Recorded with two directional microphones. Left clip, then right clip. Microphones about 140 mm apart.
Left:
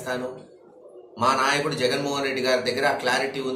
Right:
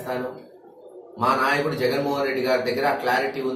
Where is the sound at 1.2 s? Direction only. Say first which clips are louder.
Right 1 dB; 10° left (ahead or behind).